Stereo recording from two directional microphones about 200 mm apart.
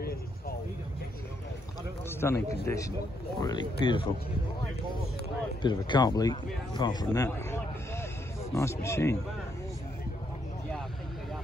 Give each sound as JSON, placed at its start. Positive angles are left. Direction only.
{"t": 0.0, "sound": "vehicle", "side_deg": 50}
{"t": 2.0, "sound": "a sound", "side_deg": 10}
{"t": 2.6, "sound": "speech", "side_deg": 15}
{"t": 5.6, "sound": "speech", "side_deg": 20}
{"t": 7.2, "sound": "a sound", "side_deg": 15}
{"t": 8.5, "sound": "speech", "side_deg": 15}